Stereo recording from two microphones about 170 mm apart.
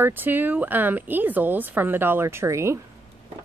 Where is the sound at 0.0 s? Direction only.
10° right (ahead or behind).